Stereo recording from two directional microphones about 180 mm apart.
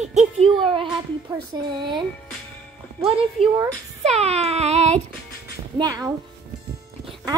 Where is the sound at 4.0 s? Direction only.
35° right (ahead or behind).